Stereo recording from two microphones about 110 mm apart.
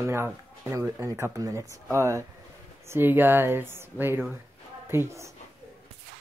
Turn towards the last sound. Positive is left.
turn(degrees=-25)  # may be behind; listen again after turning